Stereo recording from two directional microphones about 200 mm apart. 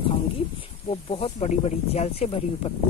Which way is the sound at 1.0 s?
30° left (ahead or behind).